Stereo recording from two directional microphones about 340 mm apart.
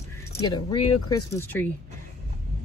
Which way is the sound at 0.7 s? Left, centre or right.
Left.